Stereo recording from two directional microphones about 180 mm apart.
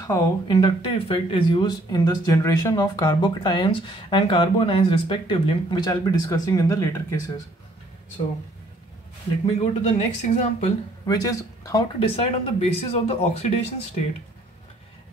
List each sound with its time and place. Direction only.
0.0 s speech: 20° left (ahead or behind)
9.6 s speech: 40° left (ahead or behind)
11.1 s speech: 20° left (ahead or behind)
12.2 s speech: 35° left (ahead or behind)